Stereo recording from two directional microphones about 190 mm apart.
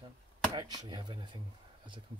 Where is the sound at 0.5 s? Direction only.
20° right (ahead or behind).